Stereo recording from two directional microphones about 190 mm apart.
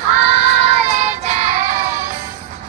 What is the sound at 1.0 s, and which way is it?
Music, 35° right (ahead or behind).